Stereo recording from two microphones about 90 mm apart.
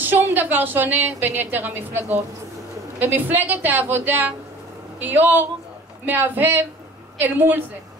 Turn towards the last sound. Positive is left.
turn(degrees=-20)  # may be behind; listen again after turning